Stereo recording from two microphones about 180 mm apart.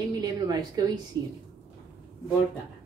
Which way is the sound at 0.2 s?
20° right (ahead or behind).